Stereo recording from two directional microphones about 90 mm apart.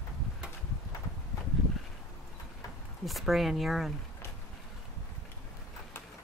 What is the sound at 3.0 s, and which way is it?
Speech, centre (ahead or behind).